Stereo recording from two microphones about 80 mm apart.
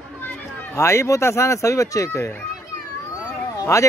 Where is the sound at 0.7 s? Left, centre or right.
Left.